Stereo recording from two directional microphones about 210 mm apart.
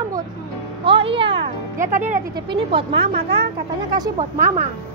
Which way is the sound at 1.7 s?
40° right (ahead or behind).